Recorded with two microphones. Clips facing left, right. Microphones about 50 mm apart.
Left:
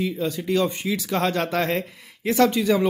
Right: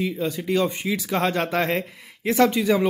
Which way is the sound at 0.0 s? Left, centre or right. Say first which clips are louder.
Even; right.